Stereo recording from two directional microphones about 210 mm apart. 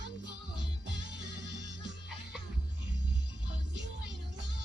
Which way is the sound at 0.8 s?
55° right (ahead or behind).